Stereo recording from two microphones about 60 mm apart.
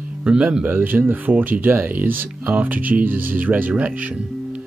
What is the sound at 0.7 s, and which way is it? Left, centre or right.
Speech, right.